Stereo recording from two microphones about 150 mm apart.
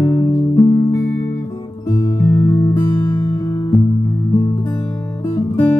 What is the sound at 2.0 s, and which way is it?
Music, 20° left (ahead or behind).